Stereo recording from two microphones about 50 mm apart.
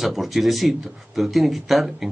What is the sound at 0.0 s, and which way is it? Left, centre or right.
Speech, centre.